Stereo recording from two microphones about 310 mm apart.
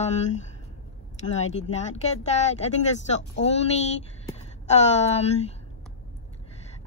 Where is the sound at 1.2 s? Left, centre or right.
Left.